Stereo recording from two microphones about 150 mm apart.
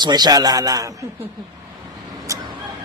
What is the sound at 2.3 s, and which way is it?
Vehicle, 20° right (ahead or behind).